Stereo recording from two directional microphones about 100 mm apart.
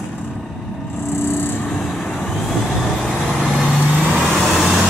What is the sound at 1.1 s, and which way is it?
Vehicle, 25° left (ahead or behind).